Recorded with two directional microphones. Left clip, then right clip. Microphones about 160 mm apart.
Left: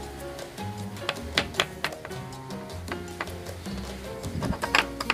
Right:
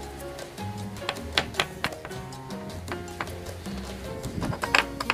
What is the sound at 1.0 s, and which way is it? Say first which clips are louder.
Music: even; 20° right (ahead or behind).